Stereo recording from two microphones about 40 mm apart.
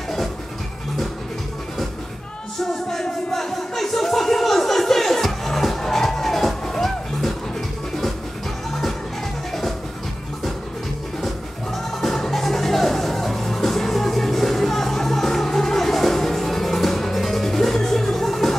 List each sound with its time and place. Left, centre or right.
2.6 s music: centre
9.5 s music: centre
11.1 s music: centre